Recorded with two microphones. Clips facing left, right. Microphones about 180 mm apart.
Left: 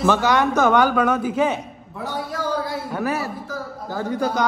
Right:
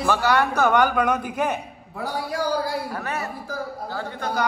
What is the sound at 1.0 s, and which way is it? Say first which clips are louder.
Speech: left 4 dB; 15° right (ahead or behind).